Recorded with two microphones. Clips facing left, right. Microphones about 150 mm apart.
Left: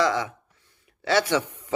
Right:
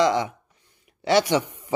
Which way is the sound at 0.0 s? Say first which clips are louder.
Right 3 dB; 20° right (ahead or behind).